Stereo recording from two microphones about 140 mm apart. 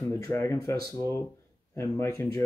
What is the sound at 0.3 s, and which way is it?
Speech, 20° left (ahead or behind).